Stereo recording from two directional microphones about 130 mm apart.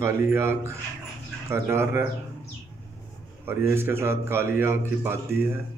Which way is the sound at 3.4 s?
15° right (ahead or behind).